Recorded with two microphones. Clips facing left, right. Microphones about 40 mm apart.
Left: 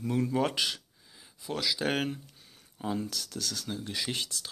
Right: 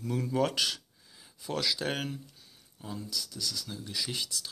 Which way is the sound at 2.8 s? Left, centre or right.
Left.